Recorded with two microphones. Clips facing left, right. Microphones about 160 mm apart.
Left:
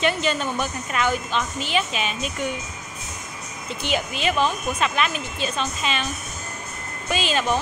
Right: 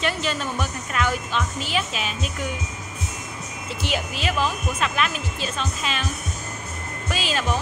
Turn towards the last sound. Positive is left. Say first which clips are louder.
# left 3 dB
turn(degrees=0)  # may be behind; listen again after turning